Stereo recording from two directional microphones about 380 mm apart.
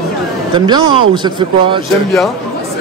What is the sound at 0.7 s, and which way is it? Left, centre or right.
Speech, centre.